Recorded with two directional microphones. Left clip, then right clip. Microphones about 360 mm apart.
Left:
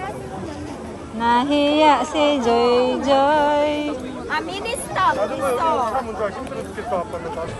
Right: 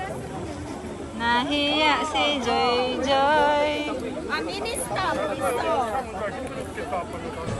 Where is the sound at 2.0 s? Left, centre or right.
Left.